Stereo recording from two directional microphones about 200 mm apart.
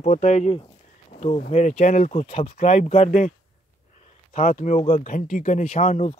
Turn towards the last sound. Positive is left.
turn(degrees=35)  # may be behind; listen again after turning